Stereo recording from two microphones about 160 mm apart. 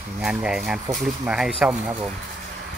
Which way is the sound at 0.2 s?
5° right (ahead or behind).